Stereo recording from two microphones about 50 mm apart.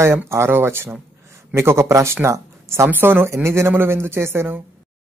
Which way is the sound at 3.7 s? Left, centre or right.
Right.